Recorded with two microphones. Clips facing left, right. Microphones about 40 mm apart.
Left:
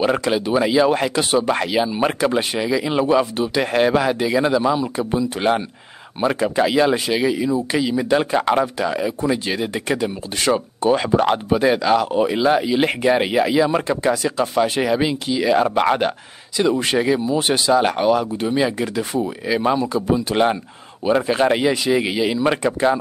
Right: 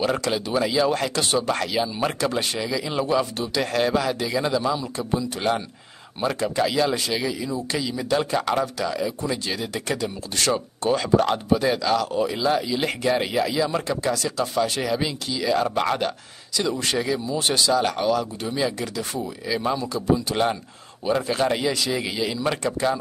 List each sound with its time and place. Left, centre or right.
0.0 s speech: left